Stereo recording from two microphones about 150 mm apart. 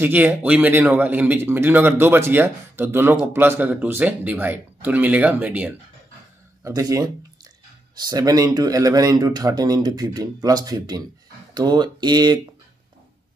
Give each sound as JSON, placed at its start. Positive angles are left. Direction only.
{"t": 0.0, "sound": "speech", "side_deg": -15}
{"t": 6.6, "sound": "speech", "side_deg": -25}